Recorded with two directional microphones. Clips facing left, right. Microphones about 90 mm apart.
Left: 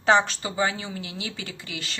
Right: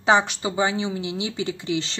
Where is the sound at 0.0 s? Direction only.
15° right (ahead or behind).